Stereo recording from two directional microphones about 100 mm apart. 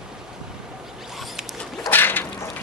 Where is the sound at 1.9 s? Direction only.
20° left (ahead or behind).